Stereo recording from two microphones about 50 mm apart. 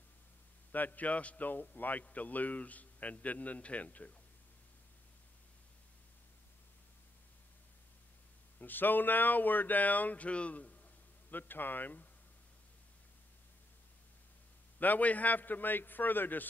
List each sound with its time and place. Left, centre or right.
0.7 s a man's voice: left
8.5 s a man's voice: left
11.2 s a man's voice: left
14.8 s a man's voice: left